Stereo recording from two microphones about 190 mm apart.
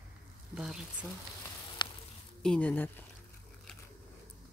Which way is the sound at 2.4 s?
5° left (ahead or behind).